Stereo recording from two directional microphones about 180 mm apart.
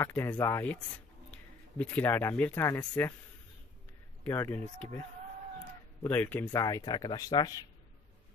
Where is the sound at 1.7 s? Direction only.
10° left (ahead or behind).